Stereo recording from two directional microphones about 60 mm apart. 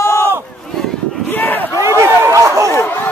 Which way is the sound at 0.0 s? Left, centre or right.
Left.